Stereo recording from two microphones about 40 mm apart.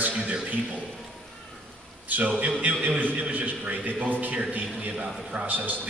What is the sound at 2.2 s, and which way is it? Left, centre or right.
A man's voice, right.